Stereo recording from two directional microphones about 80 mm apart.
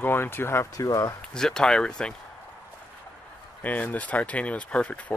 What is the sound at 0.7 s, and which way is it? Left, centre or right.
Speech, left.